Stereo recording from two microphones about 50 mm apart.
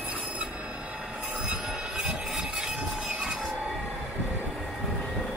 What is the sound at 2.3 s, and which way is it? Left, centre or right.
Train, centre.